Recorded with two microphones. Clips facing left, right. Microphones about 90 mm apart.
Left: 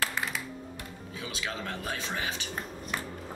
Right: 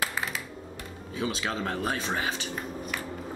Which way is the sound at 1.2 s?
35° right (ahead or behind).